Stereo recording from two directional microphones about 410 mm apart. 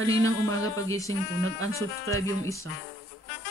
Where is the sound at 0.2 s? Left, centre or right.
Centre.